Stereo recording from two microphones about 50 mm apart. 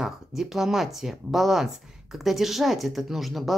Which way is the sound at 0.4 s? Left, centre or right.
Centre.